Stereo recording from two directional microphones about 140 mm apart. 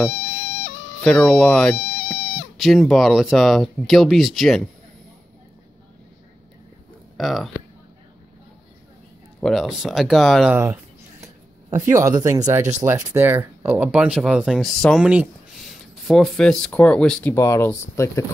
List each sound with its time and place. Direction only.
1.0 s speech: 5° left (ahead or behind)
7.2 s speech: centre (ahead or behind)
9.4 s speech: centre (ahead or behind)
10.5 s speech: 10° right (ahead or behind)
16.1 s speech: centre (ahead or behind)
17.3 s speech: 20° left (ahead or behind)